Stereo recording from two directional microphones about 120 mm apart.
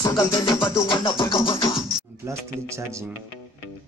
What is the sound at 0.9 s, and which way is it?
Music, 45° left (ahead or behind).